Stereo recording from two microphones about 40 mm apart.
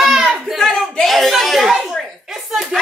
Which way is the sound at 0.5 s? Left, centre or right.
Centre.